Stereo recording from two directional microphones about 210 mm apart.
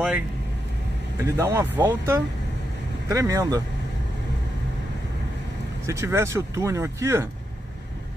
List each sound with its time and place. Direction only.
1.2 s speech: 10° right (ahead or behind)
5.9 s speech: 15° right (ahead or behind)